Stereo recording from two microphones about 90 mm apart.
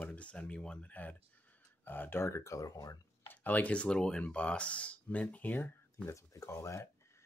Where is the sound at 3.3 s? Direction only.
20° left (ahead or behind).